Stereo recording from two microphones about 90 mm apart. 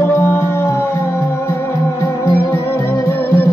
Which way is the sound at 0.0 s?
25° left (ahead or behind).